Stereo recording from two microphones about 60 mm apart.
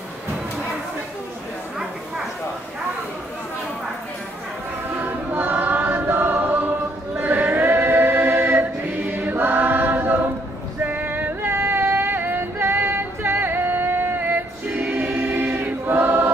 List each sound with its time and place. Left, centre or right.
4.9 s choir: right
10.8 s yodeling: right
14.8 s choir: right